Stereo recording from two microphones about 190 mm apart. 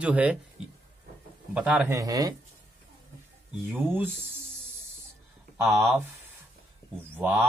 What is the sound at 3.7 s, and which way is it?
Speech, 10° right (ahead or behind).